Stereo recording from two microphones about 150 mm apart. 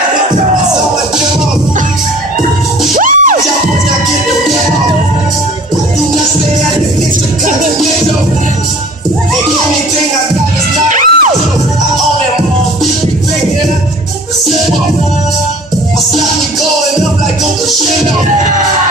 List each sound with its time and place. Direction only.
3.0 s music: 65° right (ahead or behind)
10.9 s music: 55° right (ahead or behind)